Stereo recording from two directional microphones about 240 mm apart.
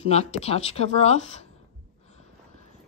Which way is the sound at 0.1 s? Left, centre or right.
Left.